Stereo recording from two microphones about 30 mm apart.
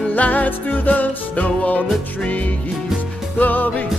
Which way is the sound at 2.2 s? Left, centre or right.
Left.